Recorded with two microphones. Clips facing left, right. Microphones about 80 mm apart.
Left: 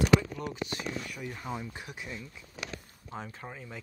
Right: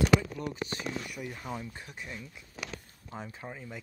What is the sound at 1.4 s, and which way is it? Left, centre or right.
Speech, centre.